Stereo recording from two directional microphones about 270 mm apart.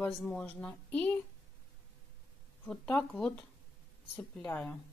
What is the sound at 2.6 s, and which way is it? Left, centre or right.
Speech, centre.